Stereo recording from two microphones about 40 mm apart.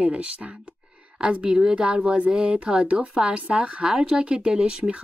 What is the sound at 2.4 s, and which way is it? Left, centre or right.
A woman's voice, right.